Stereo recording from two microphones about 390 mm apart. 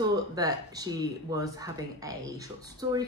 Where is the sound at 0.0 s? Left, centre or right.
Centre.